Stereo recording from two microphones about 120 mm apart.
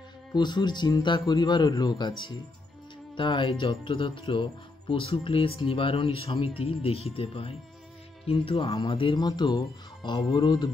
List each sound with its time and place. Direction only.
0.3 s speech: 35° left (ahead or behind)
9.2 s speech: 35° left (ahead or behind)